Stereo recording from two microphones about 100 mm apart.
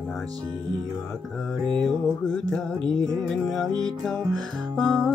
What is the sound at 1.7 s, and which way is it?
Music, 5° left (ahead or behind).